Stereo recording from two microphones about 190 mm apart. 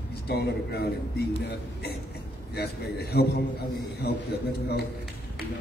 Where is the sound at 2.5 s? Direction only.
55° left (ahead or behind).